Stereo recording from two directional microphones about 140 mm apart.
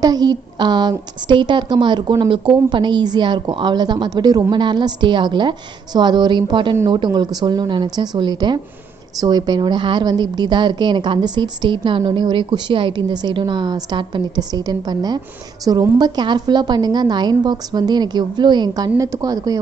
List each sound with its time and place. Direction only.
0.0 s a woman's voice: 30° right (ahead or behind)